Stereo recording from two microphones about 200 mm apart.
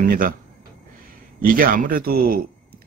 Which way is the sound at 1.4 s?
45° right (ahead or behind).